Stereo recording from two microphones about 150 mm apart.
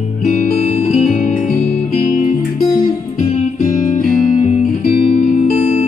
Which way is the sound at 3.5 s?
50° left (ahead or behind).